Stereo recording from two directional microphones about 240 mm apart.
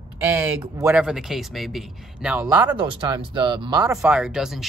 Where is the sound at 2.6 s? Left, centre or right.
Centre.